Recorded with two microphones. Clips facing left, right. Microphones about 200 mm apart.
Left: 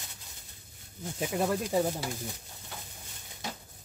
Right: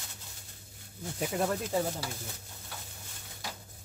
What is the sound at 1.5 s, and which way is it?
Speech, 15° left (ahead or behind).